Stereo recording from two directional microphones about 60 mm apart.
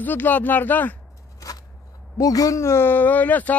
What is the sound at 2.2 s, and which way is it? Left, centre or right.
Speech, left.